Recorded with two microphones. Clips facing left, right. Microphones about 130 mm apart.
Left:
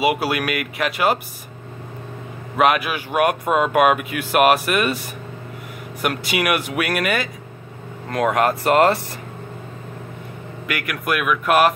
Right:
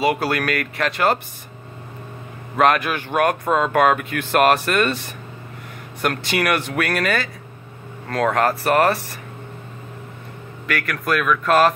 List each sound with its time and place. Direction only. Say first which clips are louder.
0.0 s speech: even; 10° left (ahead or behind)
2.5 s speech: even; 10° left (ahead or behind)
6.0 s speech: even; 10° left (ahead or behind)
10.7 s speech: right 2 dB; 15° left (ahead or behind)